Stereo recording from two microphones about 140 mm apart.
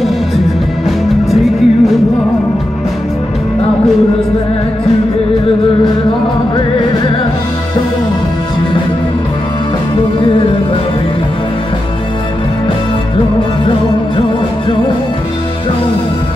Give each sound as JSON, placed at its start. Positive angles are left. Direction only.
{"t": 0.8, "sound": "music", "side_deg": 0}
{"t": 10.2, "sound": "music", "side_deg": 40}